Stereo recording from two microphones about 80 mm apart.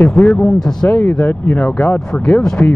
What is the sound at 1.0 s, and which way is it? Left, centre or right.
Speech, left.